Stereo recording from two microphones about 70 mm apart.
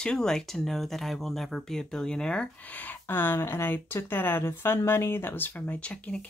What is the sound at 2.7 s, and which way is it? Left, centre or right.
Speech, left.